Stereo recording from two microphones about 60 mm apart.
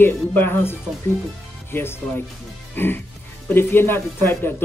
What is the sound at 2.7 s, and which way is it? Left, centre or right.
Music, left.